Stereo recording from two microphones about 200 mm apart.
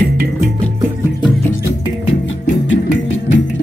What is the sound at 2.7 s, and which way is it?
Music, 70° left (ahead or behind).